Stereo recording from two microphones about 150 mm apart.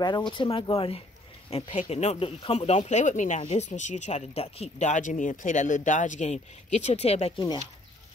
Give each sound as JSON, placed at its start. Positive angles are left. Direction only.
{"t": 0.3, "sound": "speech", "side_deg": 35}